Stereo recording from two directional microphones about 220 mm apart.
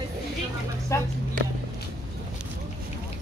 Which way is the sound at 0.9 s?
15° left (ahead or behind).